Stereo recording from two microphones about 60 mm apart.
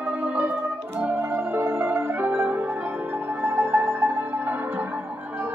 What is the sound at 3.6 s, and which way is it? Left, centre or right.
Music, right.